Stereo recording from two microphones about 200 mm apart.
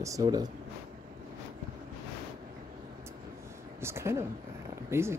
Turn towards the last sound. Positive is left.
turn(degrees=-15)  # may be behind; listen again after turning